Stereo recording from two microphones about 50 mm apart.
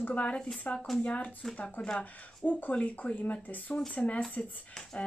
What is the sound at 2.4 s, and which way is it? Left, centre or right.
Speech, left.